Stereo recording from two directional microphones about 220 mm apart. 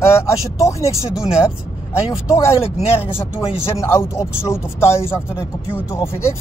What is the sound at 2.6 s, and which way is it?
Speech, 25° left (ahead or behind).